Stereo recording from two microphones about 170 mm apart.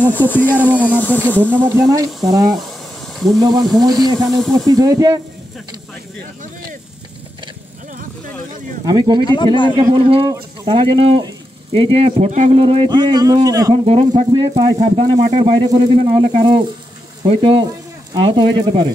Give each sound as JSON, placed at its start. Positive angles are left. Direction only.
{"t": 0.0, "sound": "speech", "side_deg": 10}
{"t": 1.5, "sound": "speech", "side_deg": -15}
{"t": 4.4, "sound": "speech", "side_deg": 0}
{"t": 4.6, "sound": "speech", "side_deg": -20}
{"t": 8.8, "sound": "speech", "side_deg": -25}
{"t": 9.2, "sound": "speech", "side_deg": 25}
{"t": 9.8, "sound": "speech", "side_deg": -25}
{"t": 13.8, "sound": "speech", "side_deg": -35}